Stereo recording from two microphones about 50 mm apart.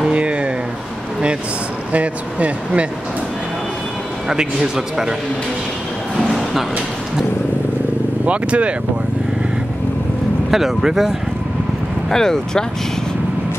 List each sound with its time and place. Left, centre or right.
0.0 s a sound: right
1.9 s speech: right
4.3 s a man's voice: centre
6.1 s a sound: centre
8.3 s speech: right
10.5 s a man's voice: centre
12.1 s speech: centre